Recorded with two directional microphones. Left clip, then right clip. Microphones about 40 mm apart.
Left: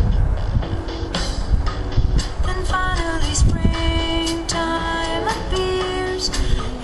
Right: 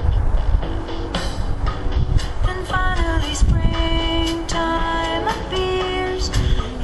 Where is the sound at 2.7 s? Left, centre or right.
Right.